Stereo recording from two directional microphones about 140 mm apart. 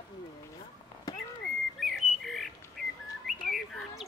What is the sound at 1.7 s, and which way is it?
Bird, centre (ahead or behind).